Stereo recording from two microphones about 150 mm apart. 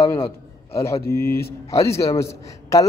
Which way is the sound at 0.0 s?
20° left (ahead or behind).